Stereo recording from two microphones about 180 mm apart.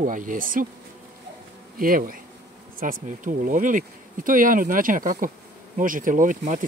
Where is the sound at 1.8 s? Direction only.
50° right (ahead or behind).